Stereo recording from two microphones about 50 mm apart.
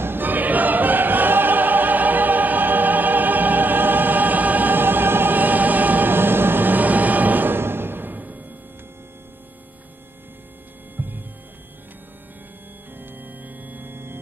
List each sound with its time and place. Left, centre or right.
0.0 s choir: right
11.0 s music: right
12.9 s organ: right